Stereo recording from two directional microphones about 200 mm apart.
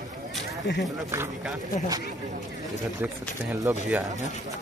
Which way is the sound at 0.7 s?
60° left (ahead or behind).